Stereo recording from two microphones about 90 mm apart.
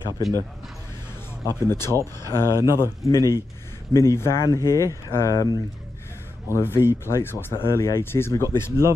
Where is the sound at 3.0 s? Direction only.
40° left (ahead or behind).